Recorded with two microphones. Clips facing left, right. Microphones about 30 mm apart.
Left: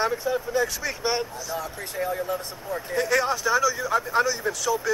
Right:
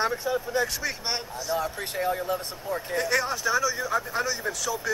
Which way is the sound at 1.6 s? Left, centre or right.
Right.